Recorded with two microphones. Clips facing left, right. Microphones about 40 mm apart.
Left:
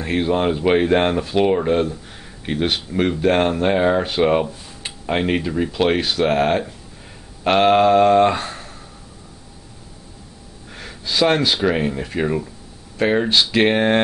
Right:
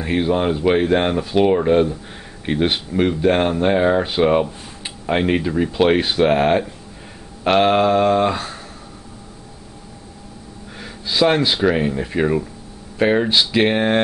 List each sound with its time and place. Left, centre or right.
0.0 s speech: centre
2.9 s speech: centre
5.9 s speech: centre
6.2 s speech: centre
10.8 s gasp: centre
11.6 s speech: centre